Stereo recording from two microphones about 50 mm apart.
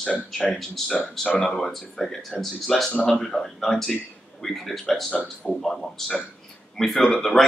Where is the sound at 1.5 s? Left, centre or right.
Centre.